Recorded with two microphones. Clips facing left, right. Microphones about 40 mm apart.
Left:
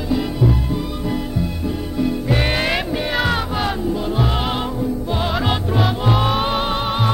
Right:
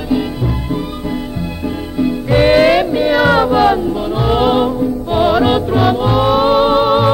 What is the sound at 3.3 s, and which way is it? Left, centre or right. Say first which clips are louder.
Music: right 10 dB; centre.